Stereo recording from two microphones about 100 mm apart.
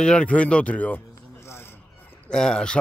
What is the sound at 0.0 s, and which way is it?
Speech, 10° left (ahead or behind).